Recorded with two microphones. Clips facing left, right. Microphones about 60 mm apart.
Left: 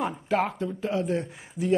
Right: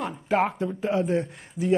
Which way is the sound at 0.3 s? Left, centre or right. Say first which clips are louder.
Right 4 dB; centre.